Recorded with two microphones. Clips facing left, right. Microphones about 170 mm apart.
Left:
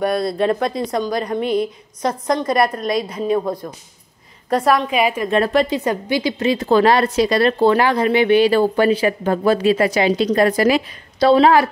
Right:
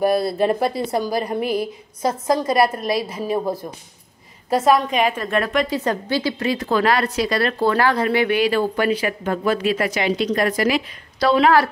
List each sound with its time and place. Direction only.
0.0 s speech: 5° right (ahead or behind)
2.7 s a woman's voice: 5° right (ahead or behind)
5.3 s speech: 30° left (ahead or behind)
5.9 s a woman's voice: 15° left (ahead or behind)